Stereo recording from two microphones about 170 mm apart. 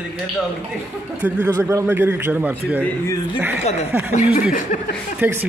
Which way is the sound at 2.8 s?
20° left (ahead or behind).